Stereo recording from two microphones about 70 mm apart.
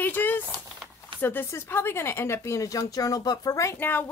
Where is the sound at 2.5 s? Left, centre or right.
Left.